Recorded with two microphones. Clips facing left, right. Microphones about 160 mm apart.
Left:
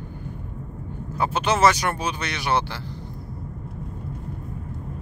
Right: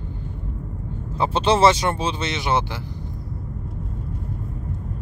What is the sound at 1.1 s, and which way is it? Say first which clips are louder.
Speech: right 4 dB; 30° right (ahead or behind).